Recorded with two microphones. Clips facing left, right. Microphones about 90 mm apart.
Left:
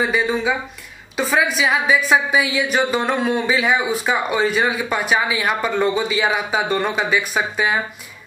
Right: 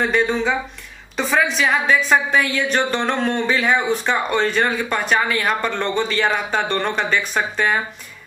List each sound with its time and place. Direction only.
0.0 s a woman's voice: 5° left (ahead or behind)